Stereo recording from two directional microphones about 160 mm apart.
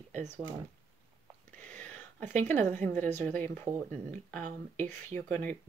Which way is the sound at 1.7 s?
10° left (ahead or behind).